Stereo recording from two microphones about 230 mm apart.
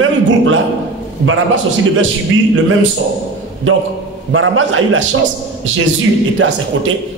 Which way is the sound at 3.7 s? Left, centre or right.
Right.